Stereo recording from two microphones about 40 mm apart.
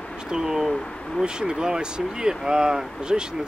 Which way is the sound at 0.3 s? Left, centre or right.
Centre.